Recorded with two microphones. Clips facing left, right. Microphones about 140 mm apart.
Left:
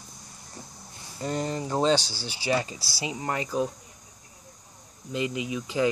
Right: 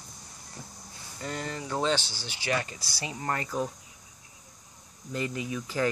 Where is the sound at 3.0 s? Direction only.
15° left (ahead or behind).